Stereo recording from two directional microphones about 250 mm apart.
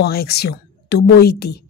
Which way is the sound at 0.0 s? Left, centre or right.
Left.